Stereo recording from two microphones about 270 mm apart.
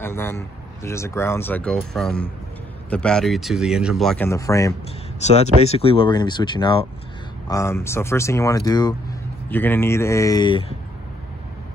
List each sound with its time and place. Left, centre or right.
0.0 s speech: centre
5.2 s speech: left